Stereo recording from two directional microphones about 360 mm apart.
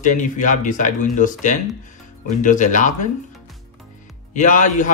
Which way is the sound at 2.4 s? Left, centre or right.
Left.